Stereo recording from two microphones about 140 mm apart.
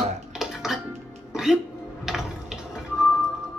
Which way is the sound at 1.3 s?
Centre (ahead or behind).